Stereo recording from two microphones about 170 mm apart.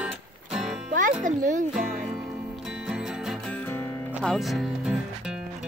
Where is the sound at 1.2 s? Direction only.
50° right (ahead or behind).